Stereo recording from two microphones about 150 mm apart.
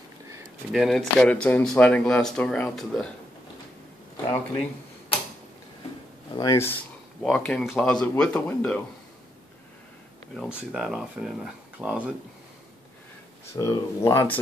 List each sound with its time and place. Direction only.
0.7 s speech: centre (ahead or behind)
6.3 s speech: 25° left (ahead or behind)
7.2 s speech: 5° left (ahead or behind)
10.3 s speech: centre (ahead or behind)
13.5 s speech: 20° left (ahead or behind)